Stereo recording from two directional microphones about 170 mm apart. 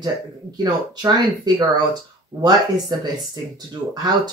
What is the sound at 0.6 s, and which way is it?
Speech, 20° right (ahead or behind).